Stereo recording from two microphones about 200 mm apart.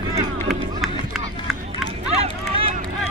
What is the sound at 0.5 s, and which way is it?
Run, centre (ahead or behind).